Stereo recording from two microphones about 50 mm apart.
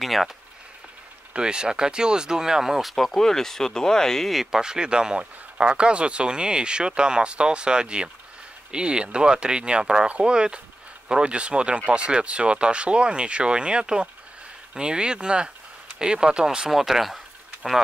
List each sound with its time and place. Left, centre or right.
0.0 s a sound: centre
1.3 s speech: centre
3.2 s speech: centre
4.3 s speech: centre